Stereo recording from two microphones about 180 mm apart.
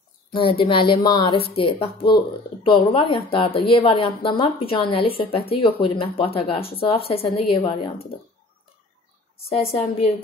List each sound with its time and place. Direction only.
0.3 s a woman's voice: 30° left (ahead or behind)
9.5 s a woman's voice: 35° left (ahead or behind)